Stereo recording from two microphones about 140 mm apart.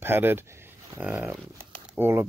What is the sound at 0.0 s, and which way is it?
Speech, 15° right (ahead or behind).